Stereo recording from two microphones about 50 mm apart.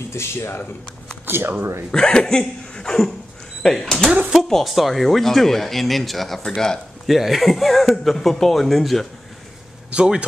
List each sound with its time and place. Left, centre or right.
0.1 s speech: left
1.2 s a sound: right
1.6 s speech: right
1.9 s speech: centre
7.1 s speech: centre
9.8 s speech: centre